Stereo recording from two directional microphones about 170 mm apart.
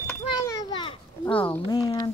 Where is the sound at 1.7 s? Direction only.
25° left (ahead or behind).